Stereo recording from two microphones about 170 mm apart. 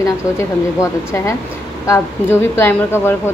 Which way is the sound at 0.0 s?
20° left (ahead or behind).